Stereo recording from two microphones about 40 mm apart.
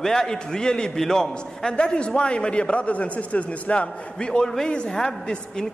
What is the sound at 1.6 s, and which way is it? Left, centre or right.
A man's voice, left.